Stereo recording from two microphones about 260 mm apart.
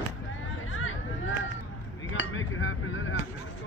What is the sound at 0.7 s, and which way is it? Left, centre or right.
Hubbub, left.